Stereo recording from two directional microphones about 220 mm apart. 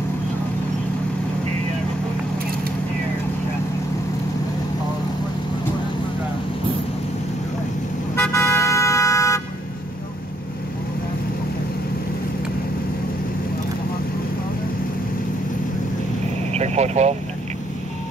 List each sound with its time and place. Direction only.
8.2 s vehicle: 10° left (ahead or behind)
16.5 s vehicle: 30° right (ahead or behind)